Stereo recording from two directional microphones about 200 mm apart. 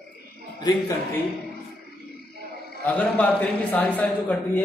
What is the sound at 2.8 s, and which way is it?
A man's voice, 5° left (ahead or behind).